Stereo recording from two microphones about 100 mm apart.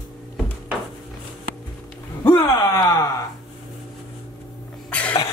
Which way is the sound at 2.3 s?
40° left (ahead or behind).